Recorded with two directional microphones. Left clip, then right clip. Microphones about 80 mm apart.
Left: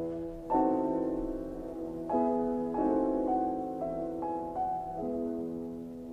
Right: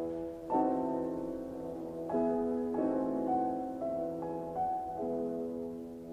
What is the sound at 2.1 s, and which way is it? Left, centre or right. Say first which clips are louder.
Music: left 3 dB; right.